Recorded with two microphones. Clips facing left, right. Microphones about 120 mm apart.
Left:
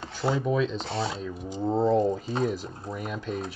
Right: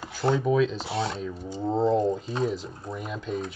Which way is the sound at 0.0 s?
Centre (ahead or behind).